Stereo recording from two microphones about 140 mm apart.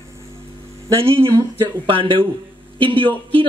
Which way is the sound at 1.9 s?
40° right (ahead or behind).